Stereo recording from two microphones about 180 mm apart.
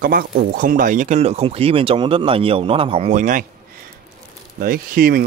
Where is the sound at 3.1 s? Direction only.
45° right (ahead or behind).